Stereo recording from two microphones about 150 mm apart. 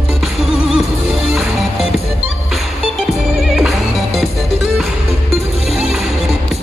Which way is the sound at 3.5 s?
Centre (ahead or behind).